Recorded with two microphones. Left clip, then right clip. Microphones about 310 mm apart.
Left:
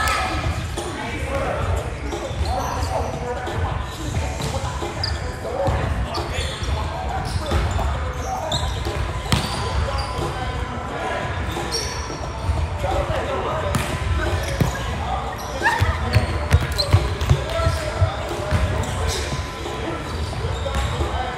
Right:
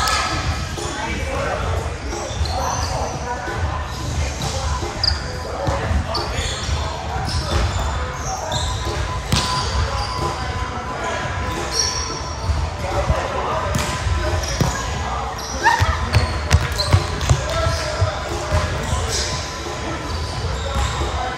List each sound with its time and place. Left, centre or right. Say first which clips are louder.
15.6 s basketball bounce: right 4 dB; centre